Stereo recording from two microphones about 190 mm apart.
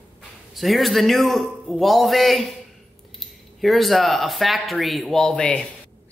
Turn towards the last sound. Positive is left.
turn(degrees=5)  # may be behind; listen again after turning